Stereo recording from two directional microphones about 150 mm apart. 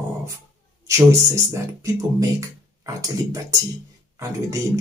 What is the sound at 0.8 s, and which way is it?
Speech, 20° right (ahead or behind).